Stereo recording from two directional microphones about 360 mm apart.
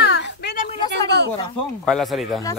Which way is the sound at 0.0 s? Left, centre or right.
Left.